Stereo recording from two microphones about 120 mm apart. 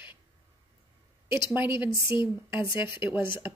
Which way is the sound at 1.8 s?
20° right (ahead or behind).